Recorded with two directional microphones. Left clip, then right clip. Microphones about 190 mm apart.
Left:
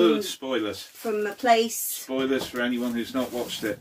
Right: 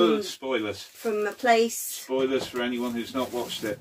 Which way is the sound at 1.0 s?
Centre (ahead or behind).